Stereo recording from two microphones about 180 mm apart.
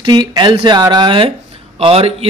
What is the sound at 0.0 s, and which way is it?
A man's voice, 25° right (ahead or behind).